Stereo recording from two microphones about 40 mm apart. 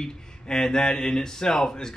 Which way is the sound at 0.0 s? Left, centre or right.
Centre.